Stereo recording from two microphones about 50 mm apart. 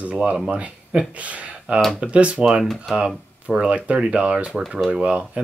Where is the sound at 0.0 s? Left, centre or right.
Right.